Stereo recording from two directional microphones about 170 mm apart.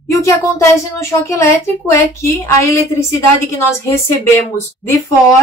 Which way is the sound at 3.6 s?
15° left (ahead or behind).